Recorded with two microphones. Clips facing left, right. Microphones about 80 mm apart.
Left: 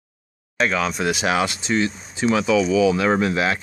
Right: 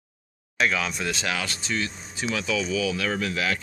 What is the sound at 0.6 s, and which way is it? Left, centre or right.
Speech, left.